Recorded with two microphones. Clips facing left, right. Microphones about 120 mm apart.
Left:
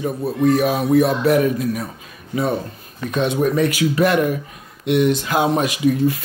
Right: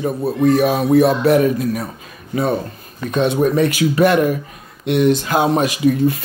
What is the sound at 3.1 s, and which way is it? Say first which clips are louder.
Speech: right 3 dB; 30° right (ahead or behind).